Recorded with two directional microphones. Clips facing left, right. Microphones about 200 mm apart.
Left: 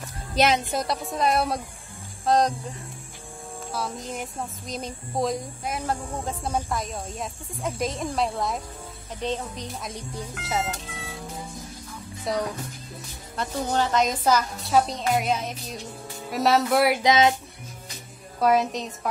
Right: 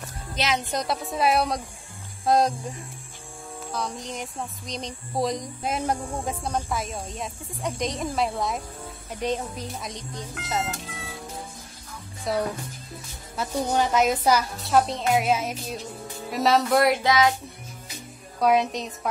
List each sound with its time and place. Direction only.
0.7 s a woman's voice: centre (ahead or behind)
3.7 s a woman's voice: 5° left (ahead or behind)
5.6 s a woman's voice: 25° right (ahead or behind)
6.0 s a woman's voice: 10° right (ahead or behind)
6.4 s a woman's voice: centre (ahead or behind)
9.2 s a woman's voice: 10° right (ahead or behind)
9.7 s a woman's voice: centre (ahead or behind)
12.3 s a woman's voice: centre (ahead or behind)
13.4 s a woman's voice: 15° right (ahead or behind); by 17.0 s 5° left (ahead or behind)
17.0 s music: 25° left (ahead or behind)
18.4 s a woman's voice: centre (ahead or behind)